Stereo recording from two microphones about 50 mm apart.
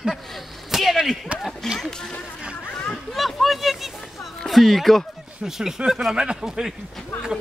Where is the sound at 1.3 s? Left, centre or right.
Right.